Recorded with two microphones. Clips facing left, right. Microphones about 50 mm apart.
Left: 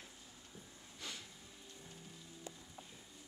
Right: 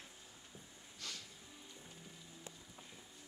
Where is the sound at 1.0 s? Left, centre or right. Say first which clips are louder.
Left 1 dB; centre.